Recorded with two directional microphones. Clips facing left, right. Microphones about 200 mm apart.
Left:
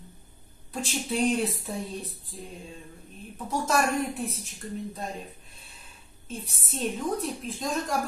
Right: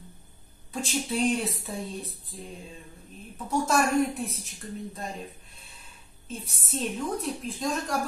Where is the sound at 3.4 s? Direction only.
Centre (ahead or behind).